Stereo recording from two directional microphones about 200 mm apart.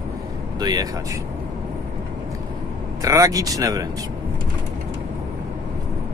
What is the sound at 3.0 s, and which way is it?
Speech, 15° right (ahead or behind).